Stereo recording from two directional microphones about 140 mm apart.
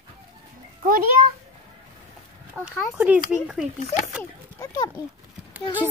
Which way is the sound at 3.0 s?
10° right (ahead or behind).